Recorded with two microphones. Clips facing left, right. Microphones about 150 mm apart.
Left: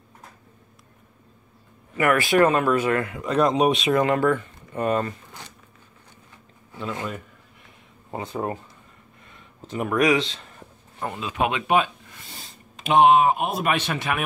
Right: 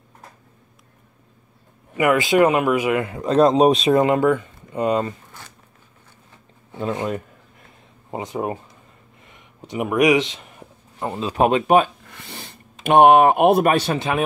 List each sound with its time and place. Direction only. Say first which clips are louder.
2.0 s speech: right 3 dB; 15° right (ahead or behind)
3.1 s speech: right 5 dB; 30° right (ahead or behind)
8.1 s speech: right 3 dB; 15° right (ahead or behind)
9.3 s a sound: right 2 dB; 15° right (ahead or behind)
11.1 s speech: right 7 dB; 35° right (ahead or behind)
12.1 s a sound: right 6 dB; 65° right (ahead or behind)
13.7 s speech: right 5 dB; 35° right (ahead or behind)